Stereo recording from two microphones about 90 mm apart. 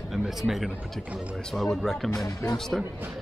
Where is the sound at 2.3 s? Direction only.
40° left (ahead or behind).